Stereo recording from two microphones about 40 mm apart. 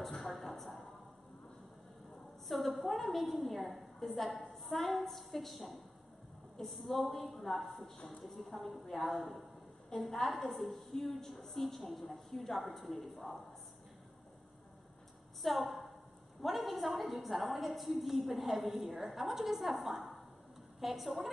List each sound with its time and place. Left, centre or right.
0.2 s a sound: centre
2.4 s a woman's voice: centre
15.4 s a woman's voice: centre